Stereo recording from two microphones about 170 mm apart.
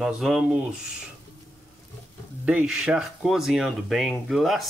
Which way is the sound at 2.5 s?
5° right (ahead or behind).